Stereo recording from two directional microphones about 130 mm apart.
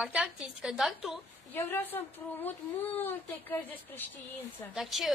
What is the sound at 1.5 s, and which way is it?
Speech, 15° left (ahead or behind).